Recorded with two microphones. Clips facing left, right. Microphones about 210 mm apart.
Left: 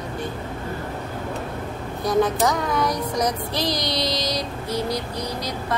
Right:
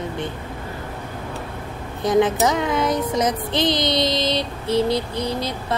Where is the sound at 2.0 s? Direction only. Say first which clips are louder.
Right 3 dB; 20° right (ahead or behind).